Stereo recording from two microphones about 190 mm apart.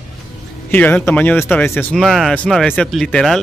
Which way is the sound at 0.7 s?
10° left (ahead or behind).